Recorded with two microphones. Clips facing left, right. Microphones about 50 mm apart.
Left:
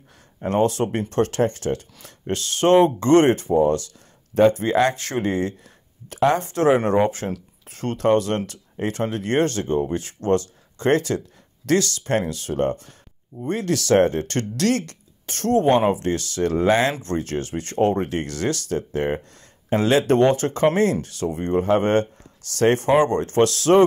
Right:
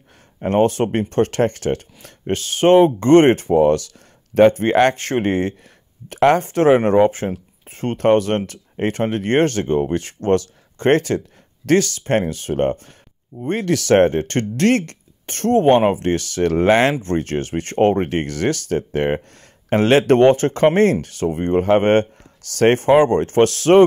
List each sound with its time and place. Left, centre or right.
0.4 s speech: right
2.0 s speech: right
3.5 s speech: right
4.4 s speech: right